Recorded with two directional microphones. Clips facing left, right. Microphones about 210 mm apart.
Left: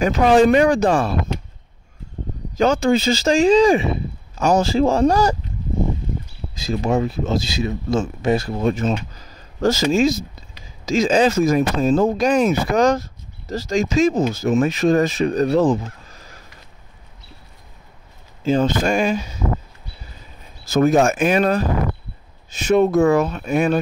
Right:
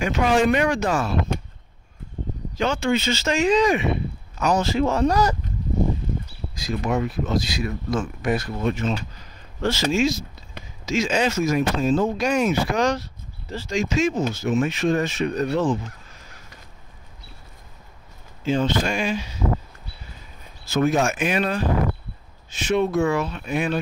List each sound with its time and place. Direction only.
0.0 s speech: 35° left (ahead or behind)
2.5 s speech: 40° left (ahead or behind)
6.5 s speech: 25° left (ahead or behind)
18.4 s speech: 40° left (ahead or behind)
20.7 s speech: 40° left (ahead or behind)
22.7 s speech: 40° left (ahead or behind)